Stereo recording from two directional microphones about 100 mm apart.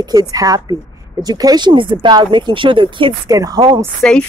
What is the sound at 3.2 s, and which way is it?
Speech, 40° right (ahead or behind).